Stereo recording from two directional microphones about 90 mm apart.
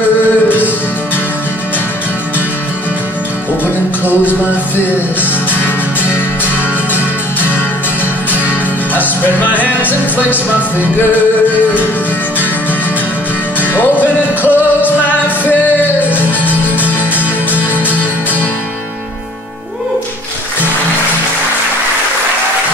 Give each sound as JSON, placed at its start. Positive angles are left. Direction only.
{"t": 4.2, "sound": "music", "side_deg": 25}
{"t": 8.9, "sound": "music", "side_deg": 20}
{"t": 13.6, "sound": "music", "side_deg": 20}